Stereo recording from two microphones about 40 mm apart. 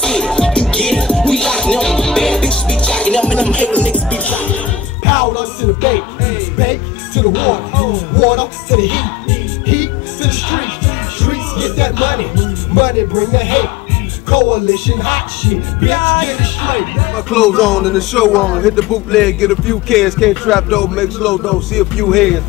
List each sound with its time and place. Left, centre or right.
0.0 s music: centre; by 4.6 s left
5.0 s music: centre